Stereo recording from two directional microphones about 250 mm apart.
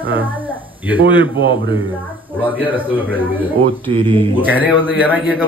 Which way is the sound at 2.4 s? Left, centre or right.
Centre.